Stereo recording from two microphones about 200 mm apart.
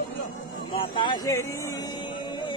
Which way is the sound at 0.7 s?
25° left (ahead or behind).